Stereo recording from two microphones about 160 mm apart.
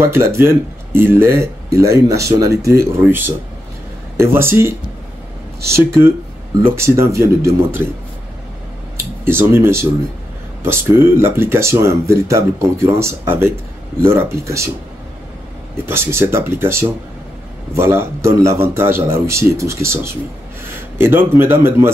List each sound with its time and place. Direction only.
0.1 s speech: 15° right (ahead or behind)
9.2 s speech: 15° right (ahead or behind)
15.7 s speech: 15° right (ahead or behind)